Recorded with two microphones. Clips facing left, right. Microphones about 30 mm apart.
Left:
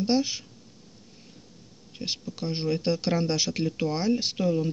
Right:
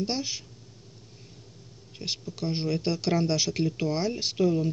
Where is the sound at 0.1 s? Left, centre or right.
Left.